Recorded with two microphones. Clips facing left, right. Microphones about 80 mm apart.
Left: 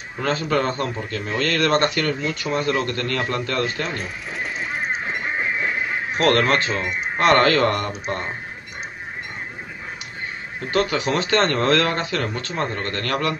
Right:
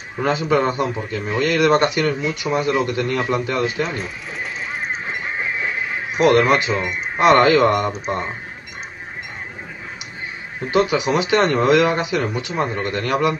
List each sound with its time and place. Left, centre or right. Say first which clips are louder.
0.2 s speech: right 3 dB; centre
6.1 s speech: right 4 dB; centre
10.6 s speech: right 4 dB; centre